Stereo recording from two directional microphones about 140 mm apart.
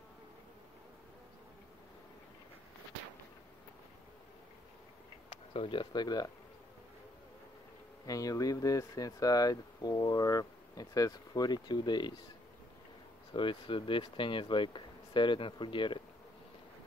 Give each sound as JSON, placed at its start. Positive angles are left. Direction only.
{"t": 5.5, "sound": "speech", "side_deg": 40}
{"t": 8.1, "sound": "speech", "side_deg": 25}
{"t": 13.3, "sound": "speech", "side_deg": 35}